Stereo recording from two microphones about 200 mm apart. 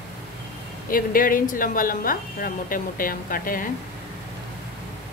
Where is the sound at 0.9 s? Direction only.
45° left (ahead or behind).